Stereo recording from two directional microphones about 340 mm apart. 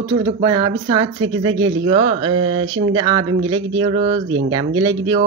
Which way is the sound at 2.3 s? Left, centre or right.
Right.